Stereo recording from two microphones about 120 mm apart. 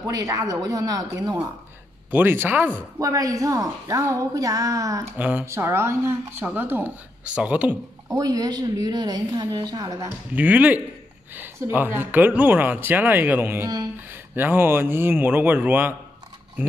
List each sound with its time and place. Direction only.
0.0 s a woman's voice: 30° right (ahead or behind)
2.0 s speech: 15° right (ahead or behind)
3.0 s a woman's voice: 30° right (ahead or behind)
5.1 s a woman's voice: 15° right (ahead or behind)
8.1 s a woman's voice: 30° right (ahead or behind)
10.0 s speech: 15° right (ahead or behind)